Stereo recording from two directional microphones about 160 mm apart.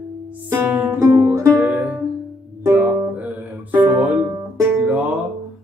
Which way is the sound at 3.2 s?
10° right (ahead or behind).